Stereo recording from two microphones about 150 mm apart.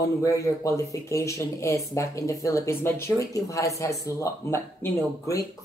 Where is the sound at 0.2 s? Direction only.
20° left (ahead or behind).